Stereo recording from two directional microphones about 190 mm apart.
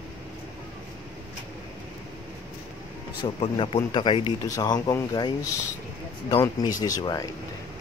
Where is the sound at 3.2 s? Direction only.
25° left (ahead or behind).